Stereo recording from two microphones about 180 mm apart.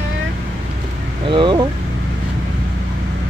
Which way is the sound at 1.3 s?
25° right (ahead or behind).